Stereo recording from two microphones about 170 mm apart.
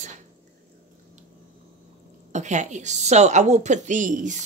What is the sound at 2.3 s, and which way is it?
A woman's voice, 45° right (ahead or behind).